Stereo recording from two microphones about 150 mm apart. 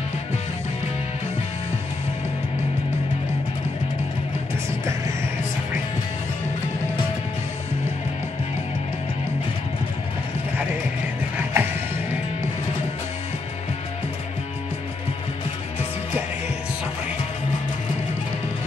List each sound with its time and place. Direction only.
11.3 s music: 15° right (ahead or behind)